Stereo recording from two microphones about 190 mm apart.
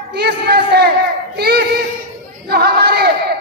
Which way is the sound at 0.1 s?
60° right (ahead or behind).